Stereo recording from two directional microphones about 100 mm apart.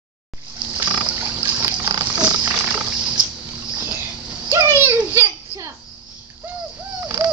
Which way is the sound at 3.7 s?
20° right (ahead or behind).